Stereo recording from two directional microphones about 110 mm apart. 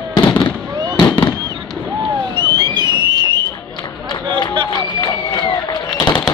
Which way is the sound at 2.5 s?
40° right (ahead or behind).